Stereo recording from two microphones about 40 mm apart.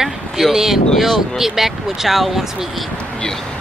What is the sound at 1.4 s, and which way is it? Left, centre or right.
Speech, centre.